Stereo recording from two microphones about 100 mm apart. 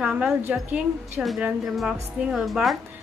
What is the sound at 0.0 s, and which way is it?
A woman's voice, 15° right (ahead or behind).